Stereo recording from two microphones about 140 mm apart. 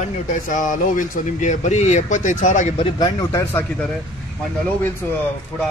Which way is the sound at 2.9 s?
25° left (ahead or behind).